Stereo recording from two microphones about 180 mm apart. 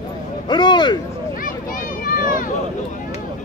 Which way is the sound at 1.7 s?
50° left (ahead or behind).